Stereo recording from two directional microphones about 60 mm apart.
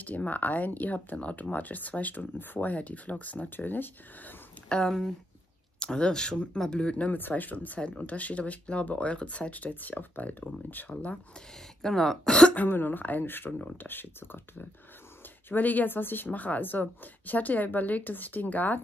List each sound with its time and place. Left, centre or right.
0.0 s speech: left
4.6 s speech: centre
11.8 s speech: centre
12.5 s speech: left
13.5 s speech: left
13.8 s speech: left